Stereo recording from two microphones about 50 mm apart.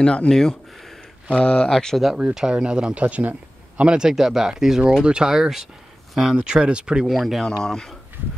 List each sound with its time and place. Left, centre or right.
0.0 s speech: left
2.1 s a man's voice: centre; by 3.8 s right
3.8 s a man's voice: centre
4.1 s speech: centre
6.3 s a man's voice: centre
7.1 s speech: centre
7.4 s speech: centre